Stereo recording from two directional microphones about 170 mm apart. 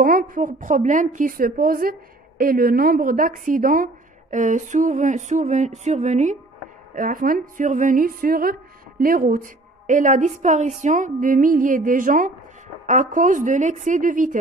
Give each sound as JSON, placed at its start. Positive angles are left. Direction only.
{"t": 0.0, "sound": "a woman's voice", "side_deg": -55}
{"t": 7.0, "sound": "a woman's voice", "side_deg": -55}